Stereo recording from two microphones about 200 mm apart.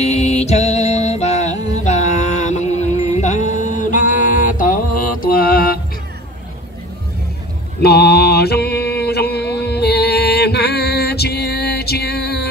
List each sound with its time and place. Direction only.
0.0 s music: 35° left (ahead or behind)
7.8 s mantra: 50° left (ahead or behind)